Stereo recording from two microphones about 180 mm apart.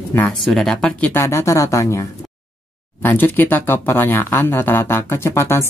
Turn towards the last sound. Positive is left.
turn(degrees=15)  # may be behind; listen again after turning